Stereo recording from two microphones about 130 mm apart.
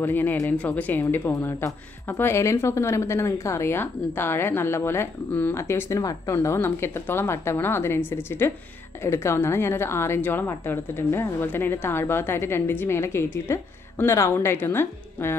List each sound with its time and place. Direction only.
0.0 s a woman's voice: 15° left (ahead or behind)